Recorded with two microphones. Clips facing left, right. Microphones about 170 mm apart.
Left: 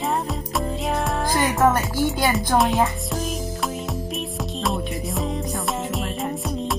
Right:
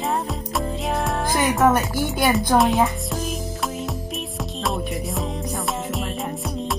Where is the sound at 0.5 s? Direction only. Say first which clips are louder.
Even; centre (ahead or behind).